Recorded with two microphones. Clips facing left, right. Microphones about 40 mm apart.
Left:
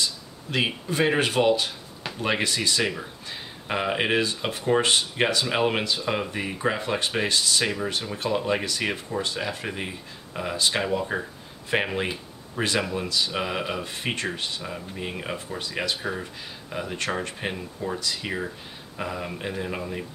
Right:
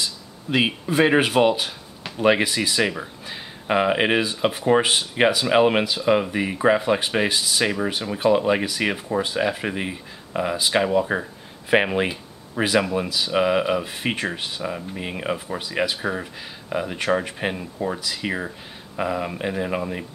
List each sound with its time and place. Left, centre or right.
0.0 s speech: centre